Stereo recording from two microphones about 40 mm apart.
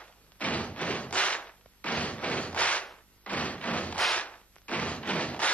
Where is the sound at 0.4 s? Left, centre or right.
Left.